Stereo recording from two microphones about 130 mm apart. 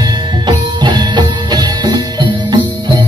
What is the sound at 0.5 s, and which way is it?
Music, 35° right (ahead or behind).